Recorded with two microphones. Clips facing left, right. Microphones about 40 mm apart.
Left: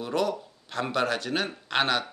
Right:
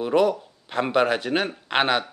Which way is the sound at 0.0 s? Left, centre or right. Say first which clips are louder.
Right 7 dB; right.